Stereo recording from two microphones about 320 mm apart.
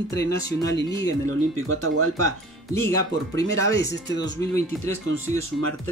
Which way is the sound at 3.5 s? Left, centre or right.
Right.